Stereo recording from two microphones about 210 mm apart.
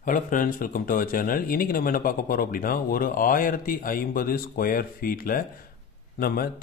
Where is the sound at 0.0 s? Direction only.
40° left (ahead or behind).